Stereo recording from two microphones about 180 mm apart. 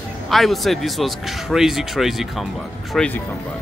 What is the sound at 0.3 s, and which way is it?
Speech, centre (ahead or behind).